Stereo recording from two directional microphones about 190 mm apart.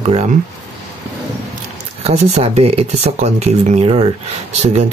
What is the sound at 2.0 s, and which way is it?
Speech, 35° right (ahead or behind).